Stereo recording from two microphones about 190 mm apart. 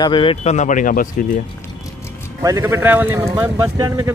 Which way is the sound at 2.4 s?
15° right (ahead or behind).